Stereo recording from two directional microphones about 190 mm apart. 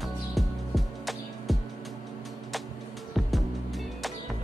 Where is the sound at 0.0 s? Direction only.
Centre (ahead or behind).